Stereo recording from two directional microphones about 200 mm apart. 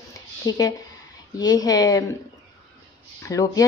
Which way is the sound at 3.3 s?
15° left (ahead or behind).